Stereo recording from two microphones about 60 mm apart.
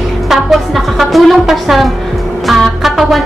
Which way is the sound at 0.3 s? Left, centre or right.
Centre.